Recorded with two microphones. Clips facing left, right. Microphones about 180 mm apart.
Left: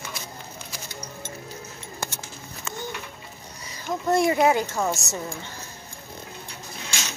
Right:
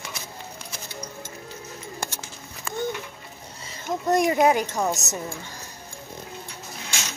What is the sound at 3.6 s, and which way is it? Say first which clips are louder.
Speech: even; 20° right (ahead or behind).